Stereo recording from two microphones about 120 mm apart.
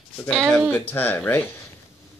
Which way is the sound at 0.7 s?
15° left (ahead or behind).